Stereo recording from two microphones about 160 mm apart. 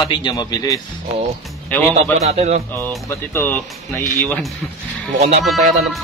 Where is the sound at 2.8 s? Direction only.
15° left (ahead or behind).